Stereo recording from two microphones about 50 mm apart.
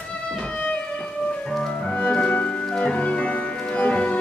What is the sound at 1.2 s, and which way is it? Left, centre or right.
Music, centre.